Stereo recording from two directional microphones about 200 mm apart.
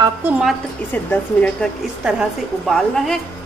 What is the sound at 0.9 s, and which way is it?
A woman's voice, 5° left (ahead or behind).